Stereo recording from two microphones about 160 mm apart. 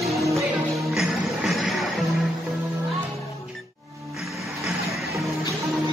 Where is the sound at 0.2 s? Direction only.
20° right (ahead or behind).